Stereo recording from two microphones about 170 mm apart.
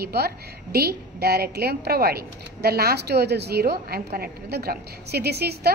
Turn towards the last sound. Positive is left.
turn(degrees=-70)  # may be behind; listen again after turning